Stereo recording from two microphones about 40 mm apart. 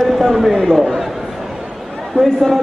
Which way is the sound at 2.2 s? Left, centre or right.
Centre.